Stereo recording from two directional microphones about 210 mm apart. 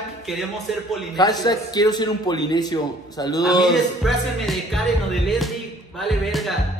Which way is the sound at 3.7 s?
Centre (ahead or behind).